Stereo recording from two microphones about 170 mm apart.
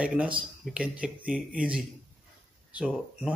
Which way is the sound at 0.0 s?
5° right (ahead or behind).